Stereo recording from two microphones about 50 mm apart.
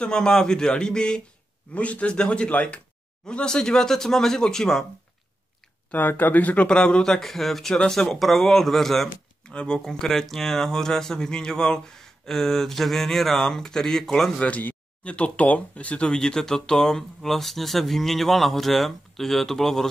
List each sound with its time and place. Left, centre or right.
0.0 s speech: centre
1.7 s speech: left; by 4.8 s centre
5.9 s speech: left
6.7 s speech: centre
9.4 s a sound: centre
9.8 s speech: centre
14.4 s speech: left
16.1 s speech: centre